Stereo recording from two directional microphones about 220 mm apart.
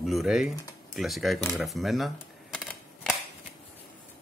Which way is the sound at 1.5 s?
Centre (ahead or behind).